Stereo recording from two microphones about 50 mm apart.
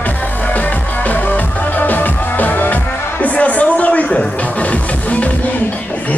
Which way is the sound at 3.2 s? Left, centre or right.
Left.